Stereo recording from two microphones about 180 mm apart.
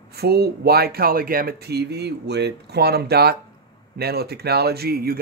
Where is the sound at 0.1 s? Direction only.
60° right (ahead or behind).